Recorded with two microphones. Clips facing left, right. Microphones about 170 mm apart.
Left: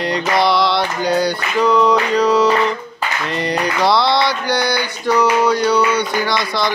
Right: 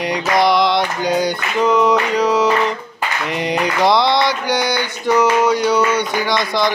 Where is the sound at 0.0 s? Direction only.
15° right (ahead or behind).